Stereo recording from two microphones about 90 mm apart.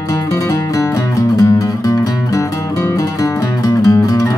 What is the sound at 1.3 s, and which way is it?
Music, 40° left (ahead or behind).